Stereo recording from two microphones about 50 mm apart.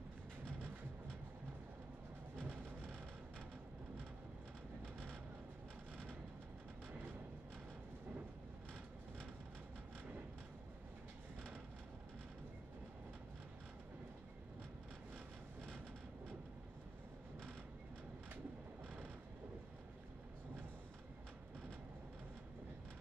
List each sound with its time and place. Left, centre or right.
2.3 s music: right
6.9 s vehicle: right